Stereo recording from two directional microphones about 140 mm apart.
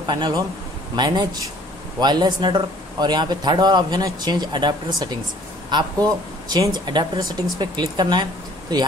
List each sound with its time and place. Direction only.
0.0 s a man's voice: 30° right (ahead or behind)